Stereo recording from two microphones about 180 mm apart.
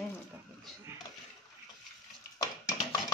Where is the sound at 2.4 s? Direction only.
20° left (ahead or behind).